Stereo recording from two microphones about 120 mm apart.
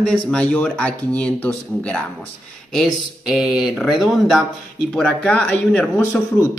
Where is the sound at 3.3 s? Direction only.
10° right (ahead or behind).